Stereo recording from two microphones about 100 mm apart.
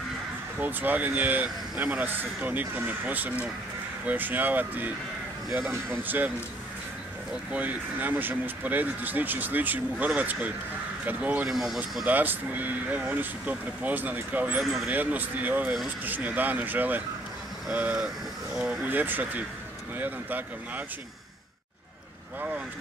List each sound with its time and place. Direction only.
0.6 s speech: 20° right (ahead or behind)
7.5 s speech: 15° right (ahead or behind)
11.4 s speech: centre (ahead or behind)
12.1 s speech: 15° right (ahead or behind)